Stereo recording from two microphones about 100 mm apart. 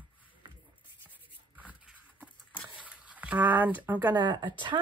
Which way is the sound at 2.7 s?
15° right (ahead or behind).